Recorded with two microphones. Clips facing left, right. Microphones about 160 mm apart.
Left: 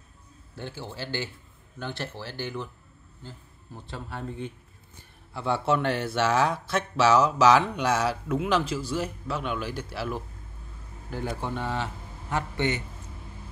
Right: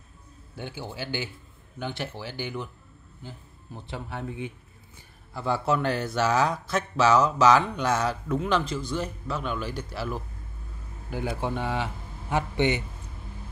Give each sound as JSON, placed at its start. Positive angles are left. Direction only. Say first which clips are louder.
{"t": 0.6, "sound": "speech", "louder": "right 1 dB", "side_deg": -10}
{"t": 5.3, "sound": "a man's voice", "louder": "even", "side_deg": 0}
{"t": 11.1, "sound": "a man's voice", "louder": "right 2 dB", "side_deg": -15}